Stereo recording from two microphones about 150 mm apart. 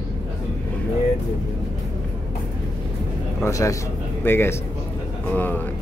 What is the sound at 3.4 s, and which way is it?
Speech, 20° left (ahead or behind).